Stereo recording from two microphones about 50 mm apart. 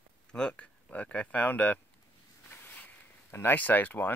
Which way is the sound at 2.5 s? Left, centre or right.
Left.